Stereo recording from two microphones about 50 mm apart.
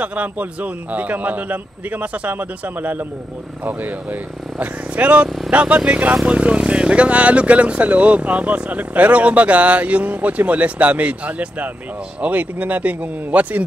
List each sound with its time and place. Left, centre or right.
0.0 s a man's voice: right